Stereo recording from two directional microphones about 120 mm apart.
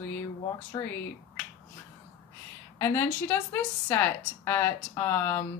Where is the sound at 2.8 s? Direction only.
20° left (ahead or behind).